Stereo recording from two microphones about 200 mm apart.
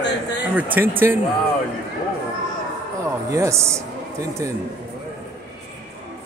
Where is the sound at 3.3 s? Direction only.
15° right (ahead or behind).